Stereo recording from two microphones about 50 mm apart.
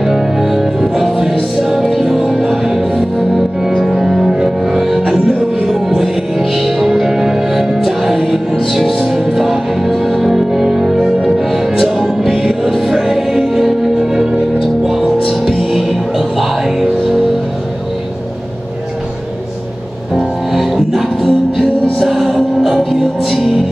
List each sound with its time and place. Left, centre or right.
0.0 s music: centre
3.8 s music: centre
5.8 s music: centre
20.2 s music: centre